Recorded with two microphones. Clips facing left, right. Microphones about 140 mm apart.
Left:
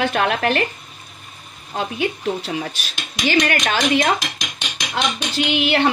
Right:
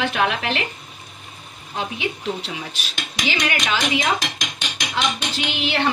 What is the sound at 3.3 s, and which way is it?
Speech, 50° left (ahead or behind).